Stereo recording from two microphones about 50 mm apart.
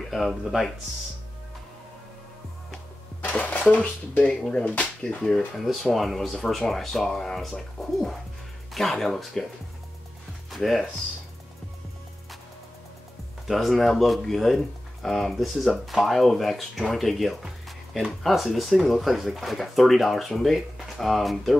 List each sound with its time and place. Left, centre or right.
0.1 s speech: centre
3.2 s dishes: left
4.2 s speech: centre
5.6 s speech: centre
10.5 s speech: centre
13.5 s speech: centre